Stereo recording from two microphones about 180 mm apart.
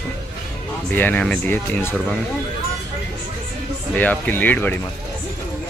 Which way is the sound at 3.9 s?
10° left (ahead or behind).